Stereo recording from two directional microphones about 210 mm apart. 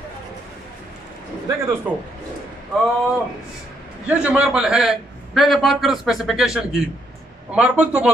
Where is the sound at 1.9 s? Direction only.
5° right (ahead or behind).